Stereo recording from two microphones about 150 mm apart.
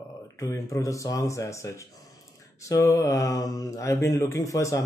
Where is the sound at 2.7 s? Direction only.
20° left (ahead or behind).